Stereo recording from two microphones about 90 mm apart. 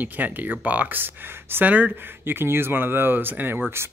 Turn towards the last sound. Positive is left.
turn(degrees=-25)  # may be behind; listen again after turning